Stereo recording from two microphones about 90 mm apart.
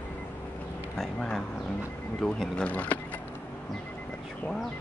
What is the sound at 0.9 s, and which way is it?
Speech, 10° left (ahead or behind).